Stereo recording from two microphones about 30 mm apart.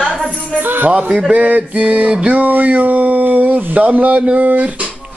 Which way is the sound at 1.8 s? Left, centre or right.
Right.